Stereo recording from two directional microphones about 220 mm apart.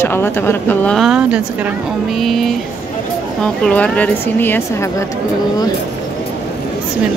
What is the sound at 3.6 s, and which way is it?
Speech, 5° left (ahead or behind).